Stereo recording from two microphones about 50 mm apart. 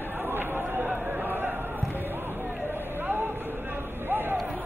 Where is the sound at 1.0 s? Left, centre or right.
Right.